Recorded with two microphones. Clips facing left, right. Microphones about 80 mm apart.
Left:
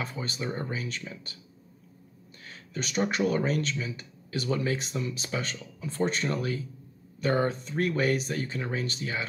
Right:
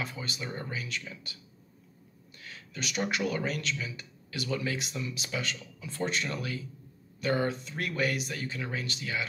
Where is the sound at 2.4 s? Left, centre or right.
Left.